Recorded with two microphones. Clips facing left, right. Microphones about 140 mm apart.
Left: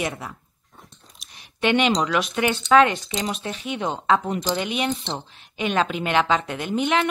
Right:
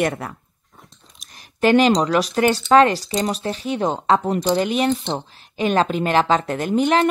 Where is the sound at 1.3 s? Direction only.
40° right (ahead or behind).